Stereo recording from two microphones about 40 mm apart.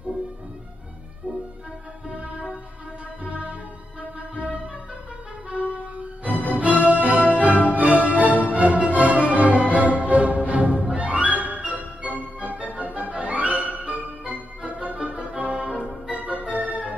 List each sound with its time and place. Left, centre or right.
2.0 s music: right
5.5 s music: right
16.1 s organ: right